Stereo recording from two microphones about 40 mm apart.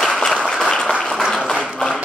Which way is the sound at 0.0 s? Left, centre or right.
Centre.